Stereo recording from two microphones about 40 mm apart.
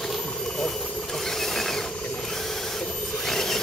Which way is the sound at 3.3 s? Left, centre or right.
Centre.